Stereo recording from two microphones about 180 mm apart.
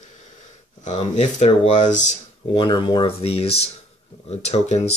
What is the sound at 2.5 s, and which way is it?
Speech, 25° left (ahead or behind).